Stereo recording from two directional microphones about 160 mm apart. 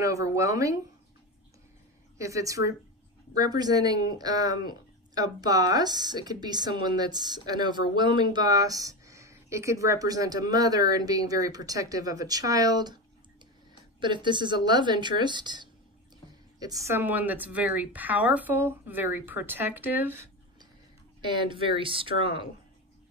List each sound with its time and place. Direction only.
0.0 s speech: 20° right (ahead or behind)
2.1 s speech: 20° right (ahead or behind)
21.2 s speech: 30° right (ahead or behind)